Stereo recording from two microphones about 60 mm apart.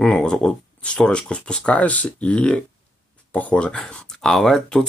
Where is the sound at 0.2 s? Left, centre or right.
Centre.